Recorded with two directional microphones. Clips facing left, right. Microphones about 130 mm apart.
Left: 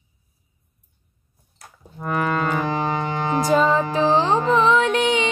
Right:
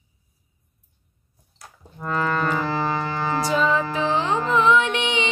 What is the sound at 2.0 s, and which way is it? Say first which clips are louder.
Music: left 1 dB; 15° left (ahead or behind).